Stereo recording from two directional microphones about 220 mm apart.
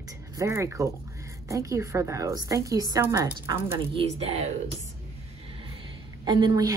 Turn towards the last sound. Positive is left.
turn(degrees=-15)  # may be behind; listen again after turning